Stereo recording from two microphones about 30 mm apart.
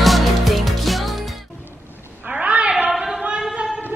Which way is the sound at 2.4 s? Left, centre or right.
Right.